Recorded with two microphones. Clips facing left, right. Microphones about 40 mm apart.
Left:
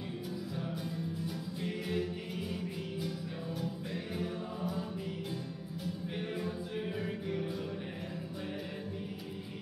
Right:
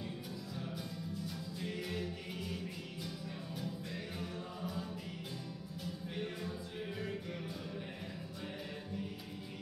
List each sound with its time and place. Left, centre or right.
1.2 s music: centre
4.2 s music: centre
6.1 s music: centre